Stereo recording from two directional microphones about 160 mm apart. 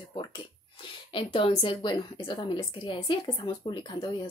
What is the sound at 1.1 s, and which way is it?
A woman's voice, 35° left (ahead or behind).